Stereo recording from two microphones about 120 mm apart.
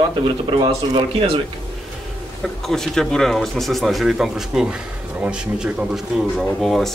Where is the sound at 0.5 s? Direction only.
40° right (ahead or behind).